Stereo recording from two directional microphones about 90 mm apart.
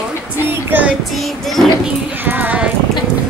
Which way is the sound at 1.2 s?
Centre (ahead or behind).